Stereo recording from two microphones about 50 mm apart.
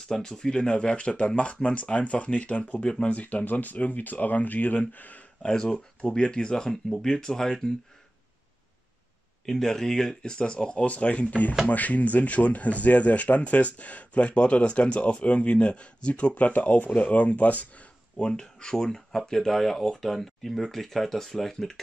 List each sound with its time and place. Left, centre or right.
0.1 s speech: centre
3.2 s speech: left
5.4 s speech: centre
9.5 s speech: centre; by 17.8 s left
18.1 s speech: centre